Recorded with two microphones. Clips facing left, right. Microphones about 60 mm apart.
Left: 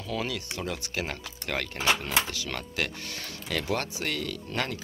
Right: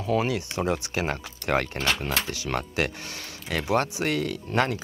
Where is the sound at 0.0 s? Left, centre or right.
Right.